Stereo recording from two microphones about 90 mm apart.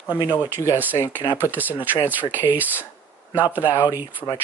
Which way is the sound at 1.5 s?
20° right (ahead or behind).